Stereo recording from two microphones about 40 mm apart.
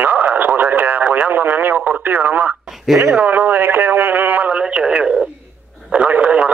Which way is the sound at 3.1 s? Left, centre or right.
Right.